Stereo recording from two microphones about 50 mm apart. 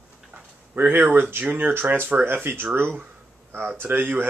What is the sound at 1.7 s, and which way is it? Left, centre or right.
Speech, right.